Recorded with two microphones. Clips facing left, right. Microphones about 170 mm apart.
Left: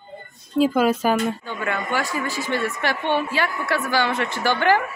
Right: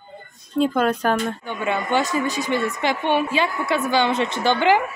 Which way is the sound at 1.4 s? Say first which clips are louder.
Right 2 dB; 20° right (ahead or behind).